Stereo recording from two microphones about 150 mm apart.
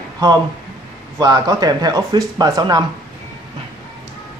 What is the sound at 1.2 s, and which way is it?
Speech, 25° right (ahead or behind).